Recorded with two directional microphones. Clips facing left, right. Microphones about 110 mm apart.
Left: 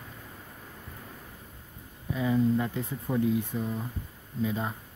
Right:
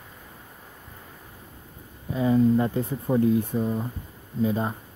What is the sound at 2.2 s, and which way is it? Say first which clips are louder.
Speech: right 6 dB; 40° right (ahead or behind).